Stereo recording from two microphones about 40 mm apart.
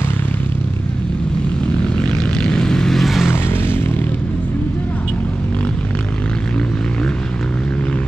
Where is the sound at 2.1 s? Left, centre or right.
Left.